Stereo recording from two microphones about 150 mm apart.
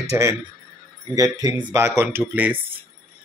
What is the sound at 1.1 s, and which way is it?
A man's voice, 25° right (ahead or behind).